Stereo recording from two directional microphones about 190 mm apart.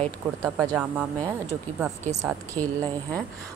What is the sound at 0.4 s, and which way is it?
Speech, 10° right (ahead or behind).